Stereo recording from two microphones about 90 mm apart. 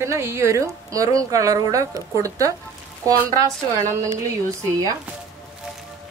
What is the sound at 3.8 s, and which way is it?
Speech, 35° right (ahead or behind).